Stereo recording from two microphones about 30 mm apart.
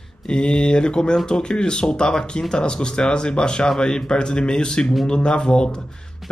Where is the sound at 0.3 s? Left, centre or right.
Left.